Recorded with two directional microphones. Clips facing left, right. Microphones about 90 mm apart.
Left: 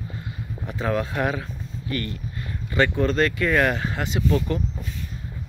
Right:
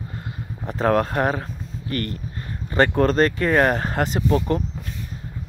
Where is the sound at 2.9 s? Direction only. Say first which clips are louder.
Right 3 dB; 45° right (ahead or behind).